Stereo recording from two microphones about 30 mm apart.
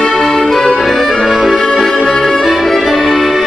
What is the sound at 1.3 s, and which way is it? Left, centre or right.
Music, centre.